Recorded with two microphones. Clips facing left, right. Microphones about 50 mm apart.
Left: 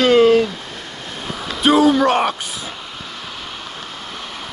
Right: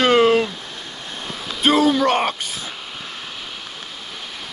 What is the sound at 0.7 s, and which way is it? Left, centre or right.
Waves, left.